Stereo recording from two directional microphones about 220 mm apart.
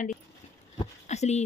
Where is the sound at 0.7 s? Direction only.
30° left (ahead or behind).